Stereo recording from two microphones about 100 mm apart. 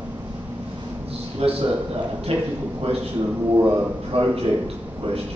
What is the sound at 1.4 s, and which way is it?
Speech, 85° right.